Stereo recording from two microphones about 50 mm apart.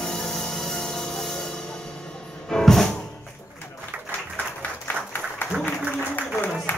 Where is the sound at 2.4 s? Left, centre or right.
Centre.